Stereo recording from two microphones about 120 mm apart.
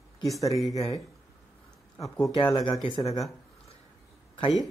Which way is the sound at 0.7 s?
30° left (ahead or behind).